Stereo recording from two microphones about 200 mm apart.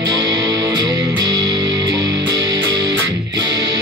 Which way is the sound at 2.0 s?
60° right (ahead or behind).